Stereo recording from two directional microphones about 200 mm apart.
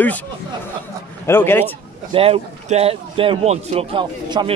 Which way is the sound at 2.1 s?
30° right (ahead or behind).